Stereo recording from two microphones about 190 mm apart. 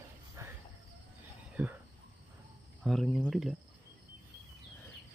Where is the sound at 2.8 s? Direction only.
Centre (ahead or behind).